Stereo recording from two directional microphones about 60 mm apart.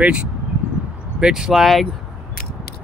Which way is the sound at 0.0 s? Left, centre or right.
Centre.